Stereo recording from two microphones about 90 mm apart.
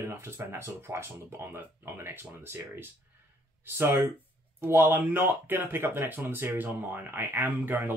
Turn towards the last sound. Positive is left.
turn(degrees=-25)  # may be behind; listen again after turning